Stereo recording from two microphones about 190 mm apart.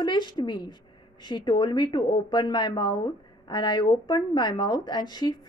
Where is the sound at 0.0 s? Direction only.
25° left (ahead or behind).